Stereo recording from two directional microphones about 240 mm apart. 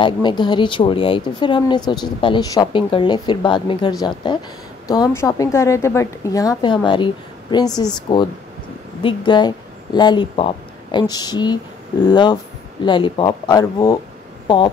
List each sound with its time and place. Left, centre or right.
0.0 s a woman's voice: centre